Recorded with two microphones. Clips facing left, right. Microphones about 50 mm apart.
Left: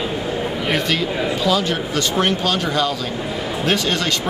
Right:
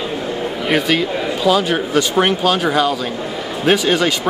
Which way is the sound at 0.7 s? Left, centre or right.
Centre.